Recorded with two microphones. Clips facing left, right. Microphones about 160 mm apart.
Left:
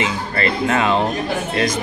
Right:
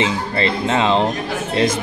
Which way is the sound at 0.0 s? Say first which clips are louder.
Right 2 dB; 25° right (ahead or behind).